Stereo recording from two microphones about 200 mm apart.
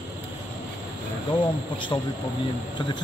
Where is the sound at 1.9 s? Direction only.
20° left (ahead or behind).